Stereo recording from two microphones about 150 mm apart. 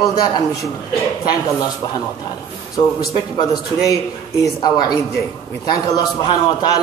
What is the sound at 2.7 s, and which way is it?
Speech, 25° left (ahead or behind).